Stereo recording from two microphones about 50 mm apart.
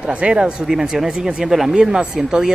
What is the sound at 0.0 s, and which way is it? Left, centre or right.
Speech, right.